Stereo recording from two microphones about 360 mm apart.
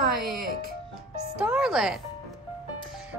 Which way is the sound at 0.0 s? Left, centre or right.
Right.